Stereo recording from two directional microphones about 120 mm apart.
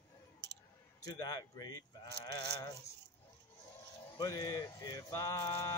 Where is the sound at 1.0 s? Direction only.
30° left (ahead or behind).